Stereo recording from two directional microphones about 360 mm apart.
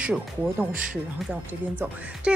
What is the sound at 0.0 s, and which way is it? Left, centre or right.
Speech, centre.